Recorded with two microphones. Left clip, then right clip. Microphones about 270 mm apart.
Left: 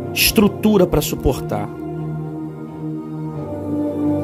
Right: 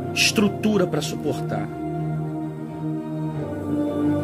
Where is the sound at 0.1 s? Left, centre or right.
Centre.